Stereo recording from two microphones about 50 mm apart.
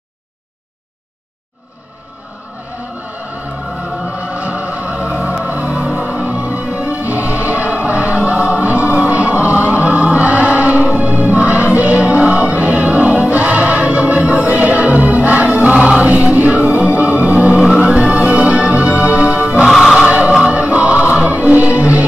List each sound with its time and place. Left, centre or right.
4.0 s music: right
19.7 s music: centre
20.0 s music: right